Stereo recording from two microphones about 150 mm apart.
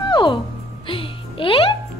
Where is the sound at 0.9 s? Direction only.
35° left (ahead or behind).